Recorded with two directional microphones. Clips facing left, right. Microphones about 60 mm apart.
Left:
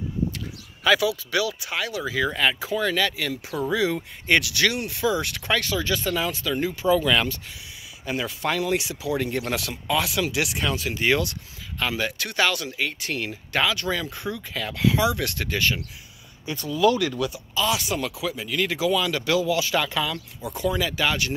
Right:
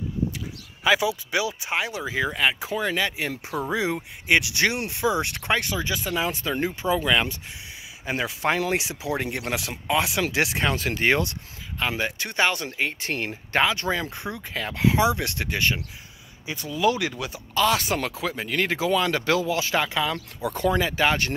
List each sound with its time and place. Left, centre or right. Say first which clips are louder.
0.8 s speech: left 1 dB; right
6.2 s speech: even; right
17.6 s speech: right 3 dB; right
20.5 s speech: right 2 dB; right